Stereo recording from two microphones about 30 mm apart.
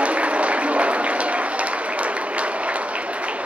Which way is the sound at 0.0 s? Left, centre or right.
Right.